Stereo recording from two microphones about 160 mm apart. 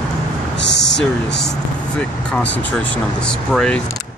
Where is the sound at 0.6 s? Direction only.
90° left.